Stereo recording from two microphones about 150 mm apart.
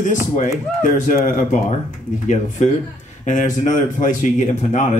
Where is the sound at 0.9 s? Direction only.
55° left (ahead or behind).